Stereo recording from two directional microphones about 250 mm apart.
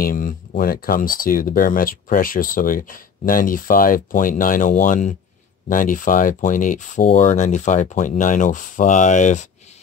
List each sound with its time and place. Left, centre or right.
0.0 s speech: left